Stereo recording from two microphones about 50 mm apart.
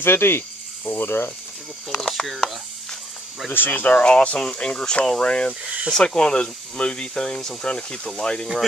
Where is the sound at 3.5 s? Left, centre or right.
Left; by 8.4 s centre.